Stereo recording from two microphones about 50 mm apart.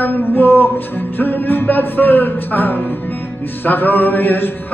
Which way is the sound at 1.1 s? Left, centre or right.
Left.